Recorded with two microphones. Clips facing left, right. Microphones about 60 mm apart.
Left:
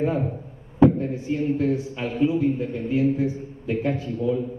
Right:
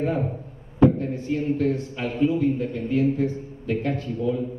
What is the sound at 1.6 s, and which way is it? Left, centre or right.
A man's voice, centre.